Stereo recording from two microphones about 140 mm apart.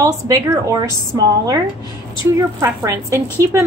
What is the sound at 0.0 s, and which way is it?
A woman's voice, 25° right (ahead or behind).